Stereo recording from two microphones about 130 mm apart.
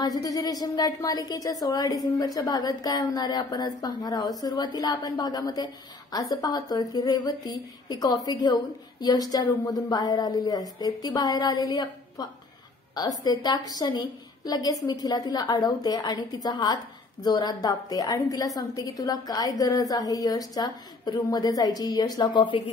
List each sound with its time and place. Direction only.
0.0 s a woman's voice: 30° left (ahead or behind)